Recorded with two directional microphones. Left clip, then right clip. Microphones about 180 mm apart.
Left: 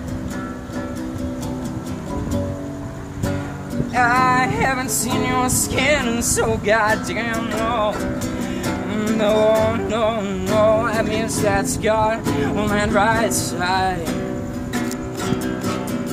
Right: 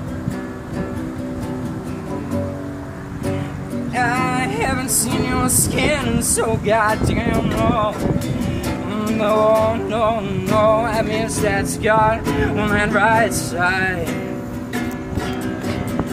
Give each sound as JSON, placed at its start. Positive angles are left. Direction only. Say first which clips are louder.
{"t": 3.9, "sound": "music", "louder": "left 4 dB", "side_deg": 25}
{"t": 8.9, "sound": "music", "louder": "even", "side_deg": 45}